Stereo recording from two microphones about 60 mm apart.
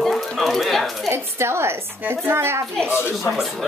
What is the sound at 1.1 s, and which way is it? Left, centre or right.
A woman's voice, right.